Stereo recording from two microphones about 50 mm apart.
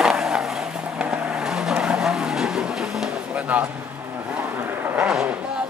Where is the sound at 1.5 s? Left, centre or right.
Centre.